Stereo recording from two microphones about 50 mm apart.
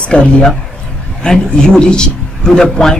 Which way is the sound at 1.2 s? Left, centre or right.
Centre.